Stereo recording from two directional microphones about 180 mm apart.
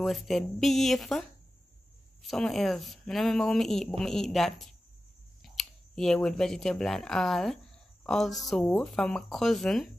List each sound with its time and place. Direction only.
0.0 s speech: centre (ahead or behind)
2.2 s speech: centre (ahead or behind)